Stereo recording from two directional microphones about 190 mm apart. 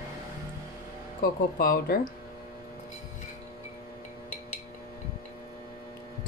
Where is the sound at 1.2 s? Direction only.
50° left (ahead or behind).